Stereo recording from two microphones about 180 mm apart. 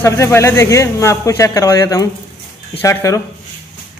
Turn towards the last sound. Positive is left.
turn(degrees=15)  # may be behind; listen again after turning